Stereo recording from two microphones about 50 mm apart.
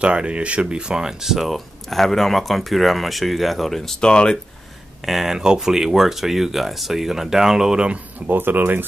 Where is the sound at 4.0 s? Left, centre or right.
Centre.